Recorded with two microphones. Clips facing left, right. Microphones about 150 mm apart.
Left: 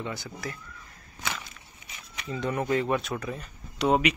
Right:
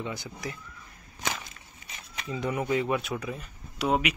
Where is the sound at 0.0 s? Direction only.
15° right (ahead or behind).